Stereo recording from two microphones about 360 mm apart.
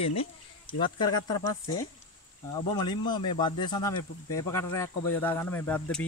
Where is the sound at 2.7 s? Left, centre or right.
Centre.